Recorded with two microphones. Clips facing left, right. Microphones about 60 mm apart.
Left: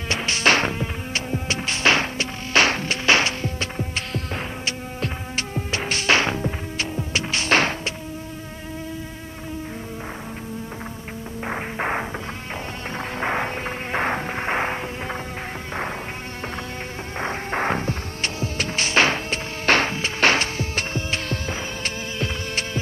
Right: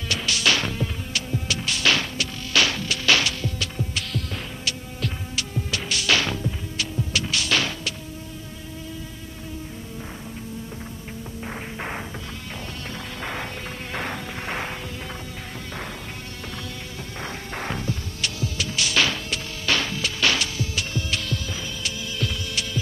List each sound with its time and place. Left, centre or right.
0.1 s music: left
11.4 s music: left
17.2 s hum: left